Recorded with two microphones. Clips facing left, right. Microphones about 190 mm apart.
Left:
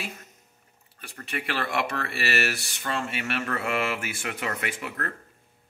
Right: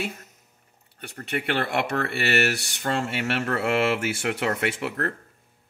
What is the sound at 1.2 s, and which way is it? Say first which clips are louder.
Speech: right 5 dB; 60° right (ahead or behind).